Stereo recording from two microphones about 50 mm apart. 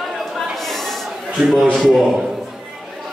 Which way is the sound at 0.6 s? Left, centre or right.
Centre.